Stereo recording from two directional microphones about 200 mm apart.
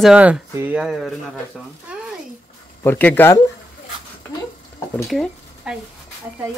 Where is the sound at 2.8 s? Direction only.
10° left (ahead or behind).